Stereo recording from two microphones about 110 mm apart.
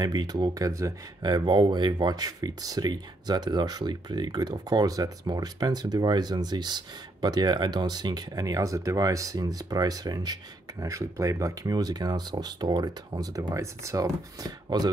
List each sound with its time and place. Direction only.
0.0 s speech: 40° right (ahead or behind)